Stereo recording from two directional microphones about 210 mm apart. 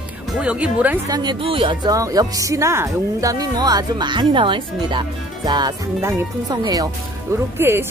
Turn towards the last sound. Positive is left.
turn(degrees=-10)  # may be behind; listen again after turning